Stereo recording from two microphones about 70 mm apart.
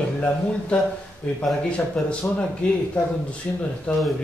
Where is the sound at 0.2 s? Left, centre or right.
Centre.